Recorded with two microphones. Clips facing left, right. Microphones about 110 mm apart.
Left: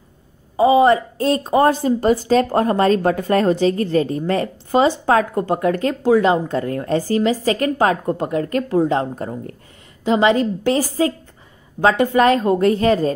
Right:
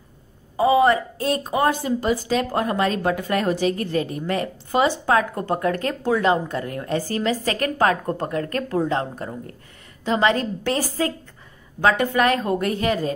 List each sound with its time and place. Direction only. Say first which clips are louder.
0.6 s a woman's voice: left 4 dB; 25° left (ahead or behind)
1.2 s a woman's voice: left 5 dB; 35° left (ahead or behind)